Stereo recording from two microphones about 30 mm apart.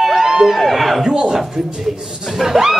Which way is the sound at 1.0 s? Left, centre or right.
Right.